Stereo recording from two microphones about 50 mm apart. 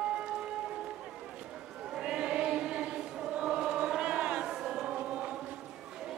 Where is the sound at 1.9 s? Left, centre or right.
Centre.